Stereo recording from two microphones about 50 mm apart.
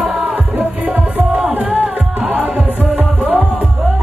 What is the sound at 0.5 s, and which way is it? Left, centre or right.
Music, right.